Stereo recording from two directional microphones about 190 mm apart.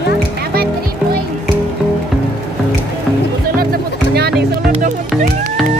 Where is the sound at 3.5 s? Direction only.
55° right (ahead or behind).